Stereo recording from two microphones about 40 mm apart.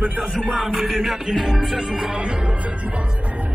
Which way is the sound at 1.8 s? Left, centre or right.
Centre.